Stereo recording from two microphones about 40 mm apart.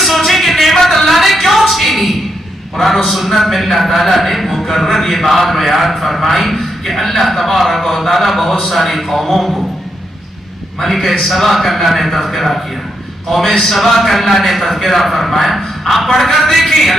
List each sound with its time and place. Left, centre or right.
0.0 s a sound: centre
2.8 s a man's voice: centre
10.8 s a man's voice: centre